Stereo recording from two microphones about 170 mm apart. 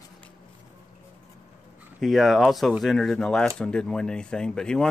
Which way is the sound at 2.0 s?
Centre (ahead or behind).